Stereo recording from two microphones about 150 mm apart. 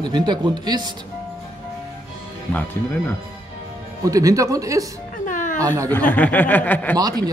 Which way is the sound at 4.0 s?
20° right (ahead or behind).